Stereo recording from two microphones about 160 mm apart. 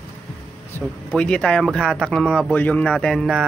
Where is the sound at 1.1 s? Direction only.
5° left (ahead or behind).